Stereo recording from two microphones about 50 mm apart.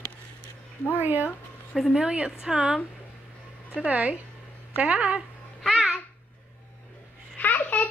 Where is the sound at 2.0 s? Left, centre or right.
Right.